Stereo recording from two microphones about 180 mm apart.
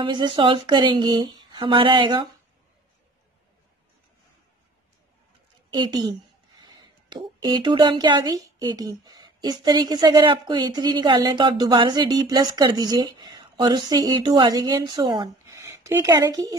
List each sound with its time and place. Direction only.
0.0 s speech: 25° right (ahead or behind)
5.7 s speech: 25° right (ahead or behind)
15.4 s a sound: 15° right (ahead or behind)